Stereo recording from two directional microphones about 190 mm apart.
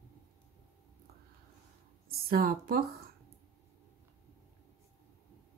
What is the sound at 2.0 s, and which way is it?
Speech, 50° right (ahead or behind).